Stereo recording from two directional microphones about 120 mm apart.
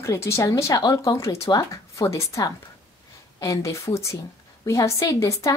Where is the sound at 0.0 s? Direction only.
25° left (ahead or behind).